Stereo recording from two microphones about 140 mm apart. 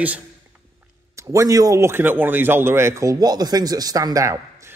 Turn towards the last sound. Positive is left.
turn(degrees=-20)  # may be behind; listen again after turning